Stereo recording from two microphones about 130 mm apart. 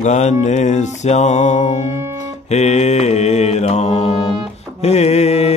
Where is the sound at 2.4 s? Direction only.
60° left (ahead or behind).